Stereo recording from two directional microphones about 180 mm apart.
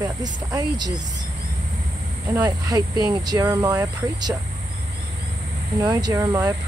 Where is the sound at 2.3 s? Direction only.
20° right (ahead or behind).